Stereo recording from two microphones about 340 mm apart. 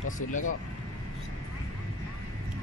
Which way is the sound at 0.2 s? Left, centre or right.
Left.